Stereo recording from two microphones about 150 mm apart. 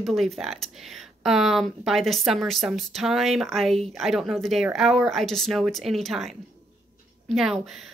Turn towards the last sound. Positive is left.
turn(degrees=0)  # may be behind; listen again after turning